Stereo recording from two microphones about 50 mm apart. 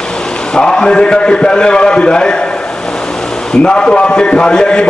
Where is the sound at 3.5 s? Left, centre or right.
Centre.